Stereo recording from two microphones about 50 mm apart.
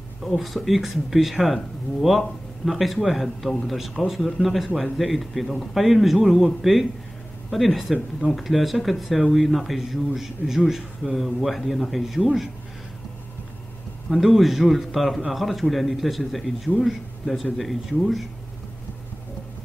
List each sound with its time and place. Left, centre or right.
0.2 s speech: centre
14.1 s speech: centre